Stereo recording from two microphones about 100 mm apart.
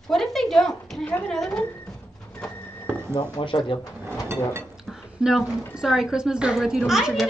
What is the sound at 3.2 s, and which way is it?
Speech, 55° left (ahead or behind).